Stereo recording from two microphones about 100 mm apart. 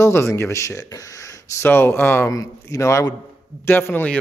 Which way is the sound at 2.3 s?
35° left (ahead or behind).